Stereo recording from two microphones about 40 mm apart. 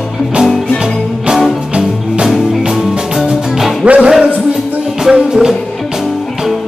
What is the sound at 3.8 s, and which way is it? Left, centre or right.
Music, right.